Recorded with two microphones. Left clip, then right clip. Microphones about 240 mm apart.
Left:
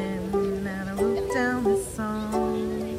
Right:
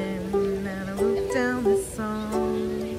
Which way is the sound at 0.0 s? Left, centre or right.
Centre.